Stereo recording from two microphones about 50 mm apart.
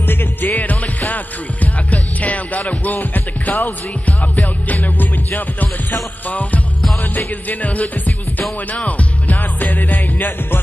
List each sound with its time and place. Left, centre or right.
0.0 s music: left
4.6 s music: left